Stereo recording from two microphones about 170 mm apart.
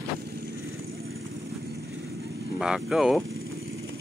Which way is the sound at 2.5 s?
5° right (ahead or behind).